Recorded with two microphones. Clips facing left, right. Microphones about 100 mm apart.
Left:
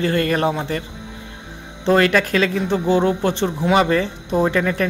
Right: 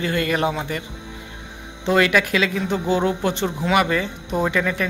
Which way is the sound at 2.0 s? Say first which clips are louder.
Left 2 dB; 40° left (ahead or behind).